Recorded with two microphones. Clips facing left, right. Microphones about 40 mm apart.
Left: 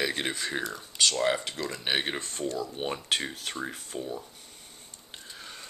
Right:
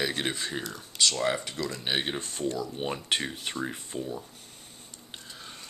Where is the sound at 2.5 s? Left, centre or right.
Left.